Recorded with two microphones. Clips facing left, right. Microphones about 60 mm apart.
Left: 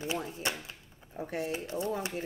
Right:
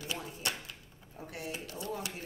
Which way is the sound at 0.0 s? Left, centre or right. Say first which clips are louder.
Left 4 dB; left.